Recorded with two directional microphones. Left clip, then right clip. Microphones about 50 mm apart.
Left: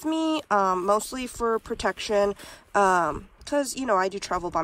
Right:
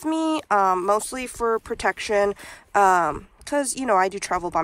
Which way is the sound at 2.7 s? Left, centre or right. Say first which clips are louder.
Right 3 dB; left.